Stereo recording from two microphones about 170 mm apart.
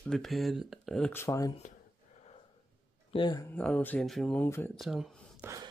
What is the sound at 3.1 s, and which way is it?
Speech, 25° left (ahead or behind).